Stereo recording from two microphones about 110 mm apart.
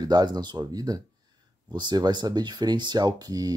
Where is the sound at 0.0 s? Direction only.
40° right (ahead or behind).